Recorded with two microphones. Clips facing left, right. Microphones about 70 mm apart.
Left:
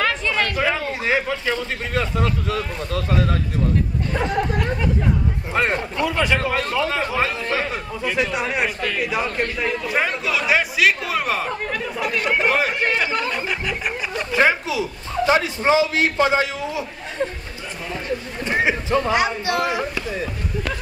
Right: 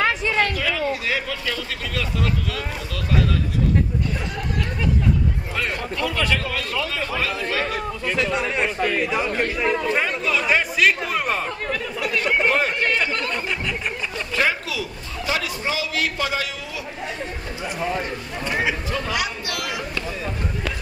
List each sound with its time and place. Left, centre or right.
0.0 s chatter: centre
0.6 s a man's voice: left
4.1 s chatter: left
5.5 s a man's voice: left
8.0 s speech: centre
9.0 s speech: centre
9.8 s speech: centre
14.1 s a man's voice: left
18.4 s a man's voice: left